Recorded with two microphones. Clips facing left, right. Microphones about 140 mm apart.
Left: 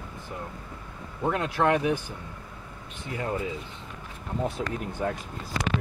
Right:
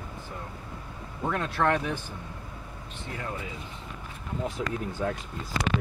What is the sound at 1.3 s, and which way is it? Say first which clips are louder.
Speech: left 2 dB; 15° left (ahead or behind).